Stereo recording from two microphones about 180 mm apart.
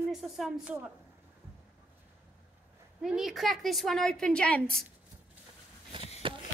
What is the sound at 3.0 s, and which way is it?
A woman's voice, centre (ahead or behind).